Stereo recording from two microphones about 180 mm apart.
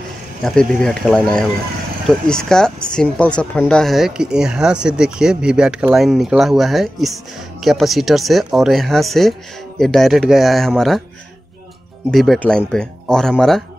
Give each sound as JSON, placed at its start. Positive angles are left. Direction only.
{"t": 0.4, "sound": "speech", "side_deg": 5}
{"t": 12.1, "sound": "speech", "side_deg": 0}